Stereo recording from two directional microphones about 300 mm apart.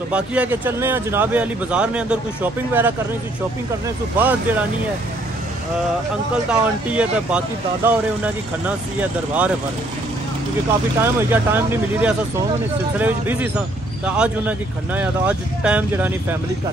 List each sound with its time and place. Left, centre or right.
0.1 s speech: centre
6.5 s speech: centre
11.0 s speech: centre